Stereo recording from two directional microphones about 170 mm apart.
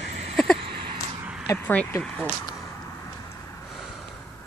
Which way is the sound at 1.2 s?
10° right (ahead or behind).